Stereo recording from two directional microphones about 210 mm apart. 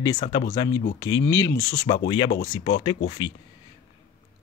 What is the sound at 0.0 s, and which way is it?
Speech, 20° left (ahead or behind).